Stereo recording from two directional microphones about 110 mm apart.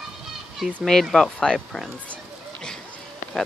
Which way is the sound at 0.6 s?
10° right (ahead or behind).